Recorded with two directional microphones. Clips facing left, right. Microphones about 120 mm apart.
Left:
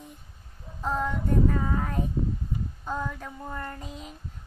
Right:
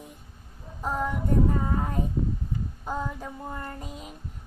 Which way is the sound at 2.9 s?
15° right (ahead or behind).